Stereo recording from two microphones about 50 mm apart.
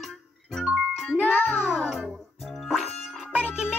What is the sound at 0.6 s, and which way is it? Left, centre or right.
Music, centre.